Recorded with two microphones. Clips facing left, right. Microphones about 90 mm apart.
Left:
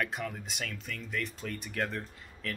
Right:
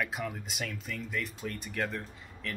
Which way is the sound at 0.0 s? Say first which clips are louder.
Even; 5° right (ahead or behind).